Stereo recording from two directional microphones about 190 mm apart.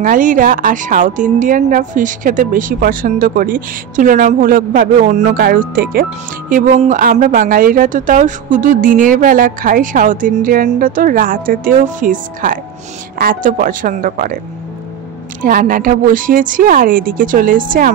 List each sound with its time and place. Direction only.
0.0 s speech: 45° right (ahead or behind)
15.4 s speech: 45° right (ahead or behind)